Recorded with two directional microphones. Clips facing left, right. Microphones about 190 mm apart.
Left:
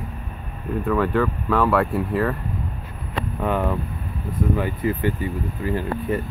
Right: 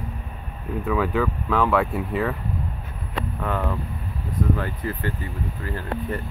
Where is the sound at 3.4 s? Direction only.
20° left (ahead or behind).